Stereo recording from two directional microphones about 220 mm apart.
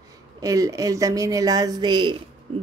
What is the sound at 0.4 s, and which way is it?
Speech, 15° right (ahead or behind).